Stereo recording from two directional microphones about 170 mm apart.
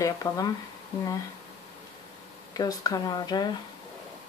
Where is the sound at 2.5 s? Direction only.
20° left (ahead or behind).